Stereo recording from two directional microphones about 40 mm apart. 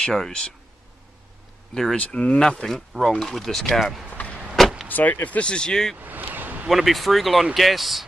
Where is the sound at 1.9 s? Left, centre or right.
Left.